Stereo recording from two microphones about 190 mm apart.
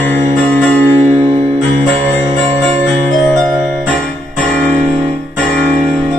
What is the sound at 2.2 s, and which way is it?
Music, 20° right (ahead or behind).